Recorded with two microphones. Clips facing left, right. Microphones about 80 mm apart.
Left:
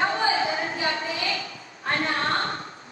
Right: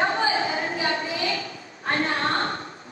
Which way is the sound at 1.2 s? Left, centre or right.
Right.